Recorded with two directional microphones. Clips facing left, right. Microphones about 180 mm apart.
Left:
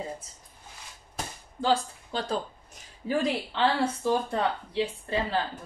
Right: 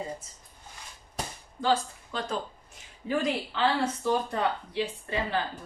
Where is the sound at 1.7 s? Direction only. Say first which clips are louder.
Left 1 dB; 35° left (ahead or behind).